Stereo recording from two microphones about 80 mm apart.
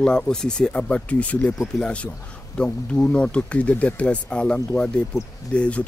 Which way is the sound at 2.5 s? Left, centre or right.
Centre.